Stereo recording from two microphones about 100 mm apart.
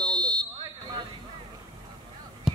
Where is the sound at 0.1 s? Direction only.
10° left (ahead or behind).